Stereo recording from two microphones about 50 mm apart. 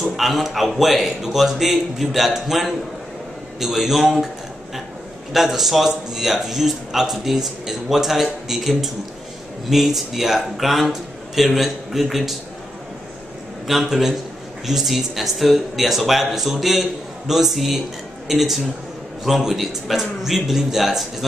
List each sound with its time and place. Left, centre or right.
0.0 s a man's voice: centre
5.3 s a man's voice: centre
13.7 s a man's voice: centre